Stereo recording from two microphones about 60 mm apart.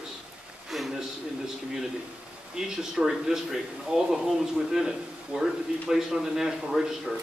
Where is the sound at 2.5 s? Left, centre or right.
Centre.